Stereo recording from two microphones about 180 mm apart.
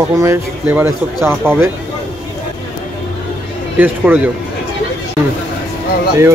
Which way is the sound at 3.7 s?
10° right (ahead or behind).